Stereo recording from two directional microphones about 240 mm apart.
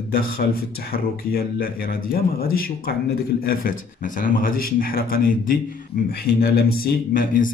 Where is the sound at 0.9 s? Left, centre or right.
Left.